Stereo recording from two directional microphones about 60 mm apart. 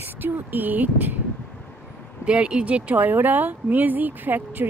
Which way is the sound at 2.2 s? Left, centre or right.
Centre.